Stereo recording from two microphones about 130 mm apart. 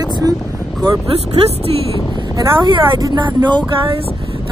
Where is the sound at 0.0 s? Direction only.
30° right (ahead or behind).